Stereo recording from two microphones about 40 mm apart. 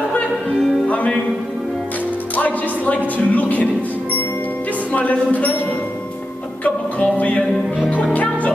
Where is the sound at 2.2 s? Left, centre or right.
Left.